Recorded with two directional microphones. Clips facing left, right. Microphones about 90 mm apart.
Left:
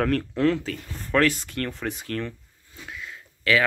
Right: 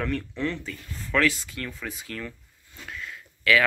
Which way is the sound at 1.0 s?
45° left (ahead or behind).